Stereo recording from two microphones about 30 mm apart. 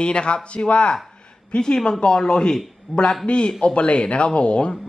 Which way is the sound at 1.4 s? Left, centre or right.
Left.